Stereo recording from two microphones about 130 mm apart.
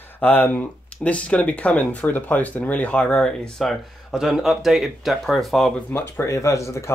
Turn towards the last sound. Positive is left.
turn(degrees=20)  # may be behind; listen again after turning